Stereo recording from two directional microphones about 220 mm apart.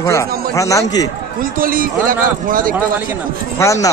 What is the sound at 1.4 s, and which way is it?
A man's voice, 40° right (ahead or behind).